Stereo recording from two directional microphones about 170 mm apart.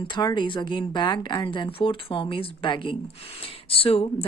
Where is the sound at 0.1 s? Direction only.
25° left (ahead or behind).